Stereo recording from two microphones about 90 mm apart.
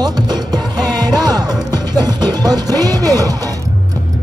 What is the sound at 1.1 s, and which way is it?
Music, 45° right (ahead or behind).